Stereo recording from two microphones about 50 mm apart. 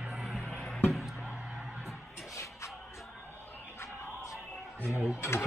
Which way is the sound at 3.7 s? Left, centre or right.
Left.